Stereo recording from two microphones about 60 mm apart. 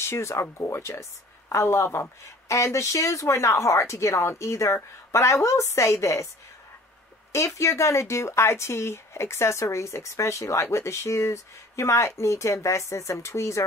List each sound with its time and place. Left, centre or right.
0.0 s speech: left
7.3 s speech: left